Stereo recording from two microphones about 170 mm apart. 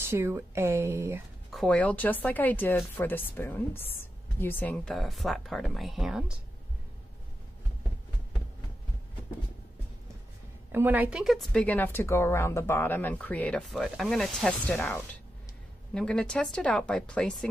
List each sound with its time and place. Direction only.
0.1 s a woman's voice: 15° right (ahead or behind)
1.5 s a woman's voice: 5° left (ahead or behind)
10.7 s a woman's voice: 10° right (ahead or behind)
15.9 s speech: 5° left (ahead or behind)